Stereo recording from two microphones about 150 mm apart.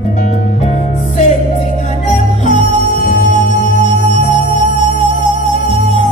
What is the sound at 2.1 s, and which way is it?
Music, 55° left (ahead or behind).